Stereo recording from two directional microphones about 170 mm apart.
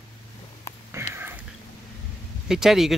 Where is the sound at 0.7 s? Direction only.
15° left (ahead or behind).